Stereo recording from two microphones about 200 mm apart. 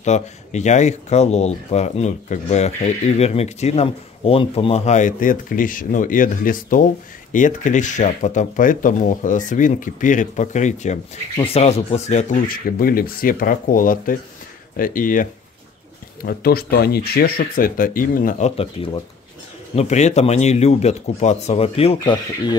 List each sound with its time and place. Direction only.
0.0 s speech: 35° left (ahead or behind)
16.3 s speech: 50° left (ahead or behind)
18.6 s speech: 30° left (ahead or behind)